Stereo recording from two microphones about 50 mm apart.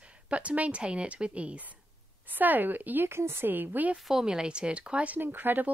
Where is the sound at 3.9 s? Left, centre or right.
Centre; by 5.2 s right.